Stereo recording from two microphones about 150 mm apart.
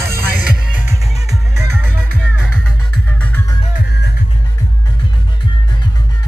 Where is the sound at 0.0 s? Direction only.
15° right (ahead or behind).